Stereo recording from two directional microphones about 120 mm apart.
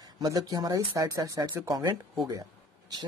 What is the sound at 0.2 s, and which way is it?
Speech, 35° right (ahead or behind).